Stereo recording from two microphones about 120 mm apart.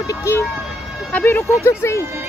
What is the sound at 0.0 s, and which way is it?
Speech, 25° left (ahead or behind).